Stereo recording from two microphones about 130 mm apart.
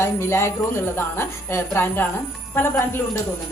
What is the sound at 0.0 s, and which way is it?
A woman's voice, 20° left (ahead or behind).